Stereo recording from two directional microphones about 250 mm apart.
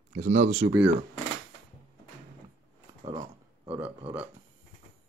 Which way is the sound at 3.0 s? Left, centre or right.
Centre.